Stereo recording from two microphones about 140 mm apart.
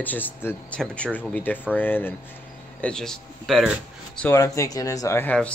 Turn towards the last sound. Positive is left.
turn(degrees=10)  # may be behind; listen again after turning